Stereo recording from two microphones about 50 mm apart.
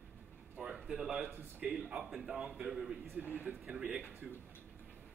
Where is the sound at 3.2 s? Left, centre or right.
Right.